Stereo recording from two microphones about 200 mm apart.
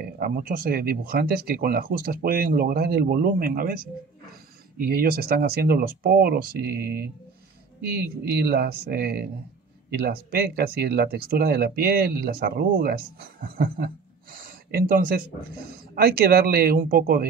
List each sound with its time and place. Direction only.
0.0 s speech: 45° right (ahead or behind)